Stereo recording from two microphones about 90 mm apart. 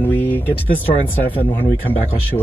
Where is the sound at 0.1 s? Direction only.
20° left (ahead or behind).